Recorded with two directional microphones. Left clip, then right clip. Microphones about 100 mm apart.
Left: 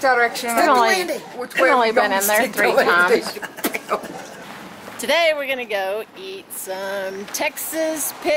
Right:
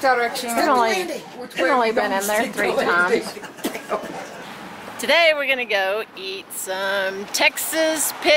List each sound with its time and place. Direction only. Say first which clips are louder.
0.0 s a woman's voice: left 2 dB; 5° left (ahead or behind)
0.3 s a woman's voice: left 2 dB; 20° left (ahead or behind)
0.7 s a woman's voice: left 2 dB; 5° right (ahead or behind)